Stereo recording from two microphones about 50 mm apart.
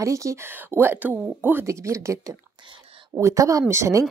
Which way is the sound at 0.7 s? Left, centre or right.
Right.